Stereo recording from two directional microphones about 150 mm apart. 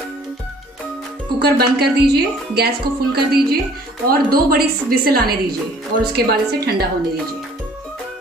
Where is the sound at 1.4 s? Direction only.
90° right.